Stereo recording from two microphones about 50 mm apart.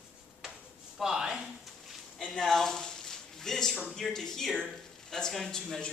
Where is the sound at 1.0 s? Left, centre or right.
Centre.